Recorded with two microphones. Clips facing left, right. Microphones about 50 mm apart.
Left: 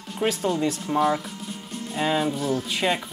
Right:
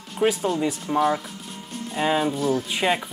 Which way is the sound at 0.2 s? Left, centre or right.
Centre.